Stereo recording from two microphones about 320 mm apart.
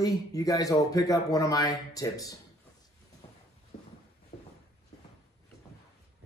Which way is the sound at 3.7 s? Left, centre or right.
Left.